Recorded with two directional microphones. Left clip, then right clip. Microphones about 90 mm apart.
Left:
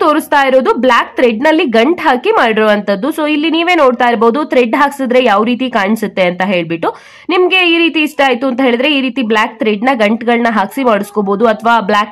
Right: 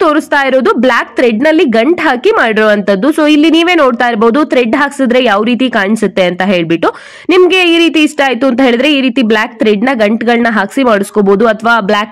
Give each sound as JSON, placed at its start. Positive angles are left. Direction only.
{"t": 0.0, "sound": "a woman's voice", "side_deg": -35}